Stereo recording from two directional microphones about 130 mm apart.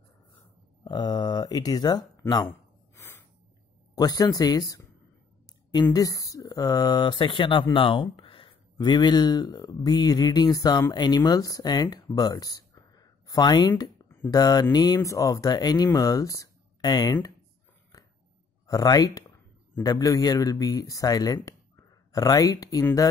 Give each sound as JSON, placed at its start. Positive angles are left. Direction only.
{"t": 0.8, "sound": "speech", "side_deg": 35}
{"t": 3.0, "sound": "snort", "side_deg": 20}
{"t": 3.9, "sound": "speech", "side_deg": 30}
{"t": 14.0, "sound": "a sound", "side_deg": 15}
{"t": 14.3, "sound": "speech", "side_deg": 30}
{"t": 18.7, "sound": "speech", "side_deg": 30}